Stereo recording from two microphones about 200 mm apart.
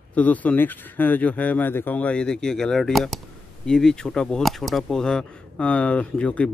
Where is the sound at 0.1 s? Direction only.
10° left (ahead or behind).